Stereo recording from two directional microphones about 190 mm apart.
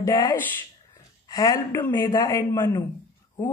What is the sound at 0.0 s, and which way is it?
A woman's voice, 15° left (ahead or behind).